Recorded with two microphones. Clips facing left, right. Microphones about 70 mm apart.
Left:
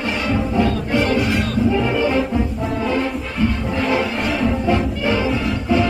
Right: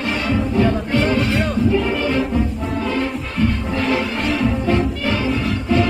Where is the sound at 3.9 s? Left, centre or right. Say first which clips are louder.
Even; centre.